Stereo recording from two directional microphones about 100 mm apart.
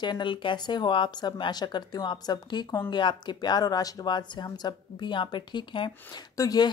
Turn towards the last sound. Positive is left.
turn(degrees=35)  # may be behind; listen again after turning